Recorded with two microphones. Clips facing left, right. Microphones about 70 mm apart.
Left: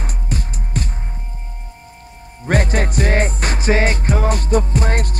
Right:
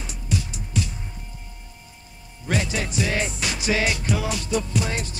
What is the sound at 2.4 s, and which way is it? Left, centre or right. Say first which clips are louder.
Music: left 7 dB; left.